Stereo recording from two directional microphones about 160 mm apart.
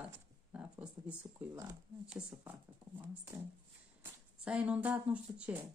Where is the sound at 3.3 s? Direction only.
15° right (ahead or behind).